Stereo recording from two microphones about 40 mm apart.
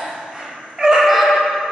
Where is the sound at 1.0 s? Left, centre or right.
Centre.